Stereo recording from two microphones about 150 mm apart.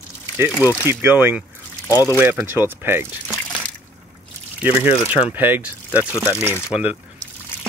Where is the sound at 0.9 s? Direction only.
15° right (ahead or behind).